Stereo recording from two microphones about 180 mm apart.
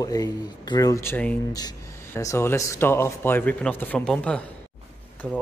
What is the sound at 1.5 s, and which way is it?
Speech, 20° left (ahead or behind).